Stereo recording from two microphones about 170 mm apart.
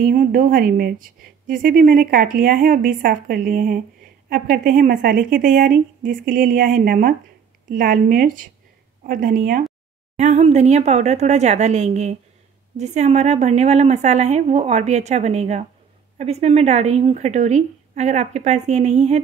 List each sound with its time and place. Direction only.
0.0 s a woman's voice: 50° right (ahead or behind)